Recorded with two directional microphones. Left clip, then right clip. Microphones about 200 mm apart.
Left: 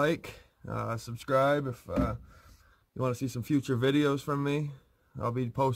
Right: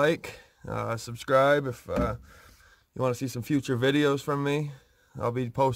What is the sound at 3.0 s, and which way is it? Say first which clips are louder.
Speech: right 4 dB; 20° right (ahead or behind).